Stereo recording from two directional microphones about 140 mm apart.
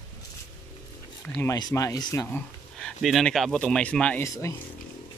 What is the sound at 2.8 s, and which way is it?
Speech, centre (ahead or behind).